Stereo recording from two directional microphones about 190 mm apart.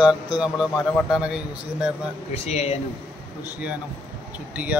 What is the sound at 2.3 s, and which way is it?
Speech, 35° left (ahead or behind).